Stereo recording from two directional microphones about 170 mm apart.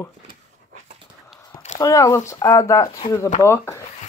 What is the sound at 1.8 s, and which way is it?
Speech, 20° left (ahead or behind).